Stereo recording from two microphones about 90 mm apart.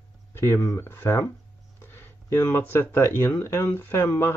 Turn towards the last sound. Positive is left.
turn(degrees=25)  # may be behind; listen again after turning